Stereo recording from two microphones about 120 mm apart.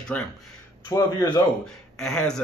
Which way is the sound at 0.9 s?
30° left (ahead or behind).